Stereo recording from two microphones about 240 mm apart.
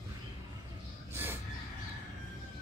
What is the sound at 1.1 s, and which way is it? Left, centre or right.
Gasp, centre.